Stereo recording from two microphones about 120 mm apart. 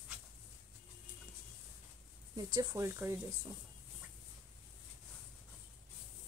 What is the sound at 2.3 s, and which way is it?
Speech, 35° right (ahead or behind).